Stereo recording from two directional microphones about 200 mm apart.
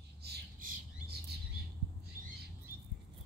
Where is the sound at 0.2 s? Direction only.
55° right (ahead or behind).